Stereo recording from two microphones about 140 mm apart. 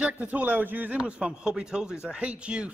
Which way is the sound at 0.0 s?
10° right (ahead or behind).